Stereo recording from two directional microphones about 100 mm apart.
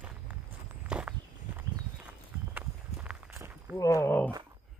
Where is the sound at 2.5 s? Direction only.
10° right (ahead or behind).